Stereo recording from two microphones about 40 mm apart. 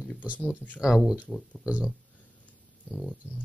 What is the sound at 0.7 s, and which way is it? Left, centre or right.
Speech, centre.